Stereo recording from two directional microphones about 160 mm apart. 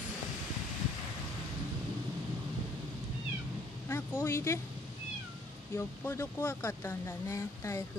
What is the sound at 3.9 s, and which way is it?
Speech, 15° left (ahead or behind).